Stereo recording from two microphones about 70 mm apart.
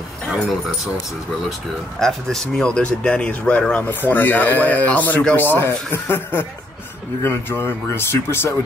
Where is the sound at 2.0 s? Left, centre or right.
Centre.